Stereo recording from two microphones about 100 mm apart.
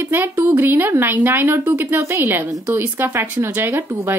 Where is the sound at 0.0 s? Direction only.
20° right (ahead or behind).